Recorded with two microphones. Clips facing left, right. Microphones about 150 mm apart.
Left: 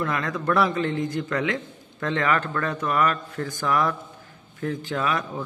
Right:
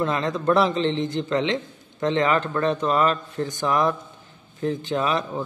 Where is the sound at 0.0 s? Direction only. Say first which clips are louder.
Right 3 dB; 25° right (ahead or behind).